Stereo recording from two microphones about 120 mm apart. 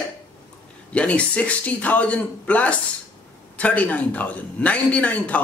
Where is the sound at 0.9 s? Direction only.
10° left (ahead or behind).